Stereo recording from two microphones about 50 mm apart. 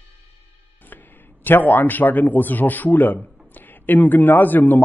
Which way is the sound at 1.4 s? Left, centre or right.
Left.